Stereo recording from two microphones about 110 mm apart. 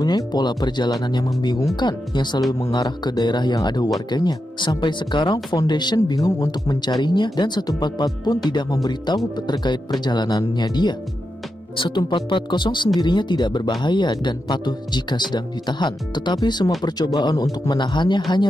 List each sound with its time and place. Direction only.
0.0 s speech: 40° left (ahead or behind)